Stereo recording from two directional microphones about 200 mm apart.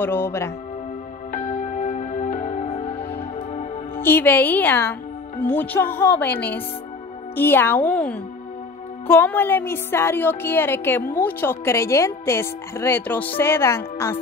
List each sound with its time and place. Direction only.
0.0 s speech: 10° left (ahead or behind)
1.3 s music: 40° left (ahead or behind)
4.0 s speech: 10° left (ahead or behind)